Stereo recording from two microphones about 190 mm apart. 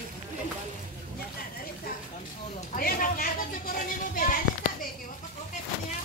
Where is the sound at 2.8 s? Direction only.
50° left (ahead or behind).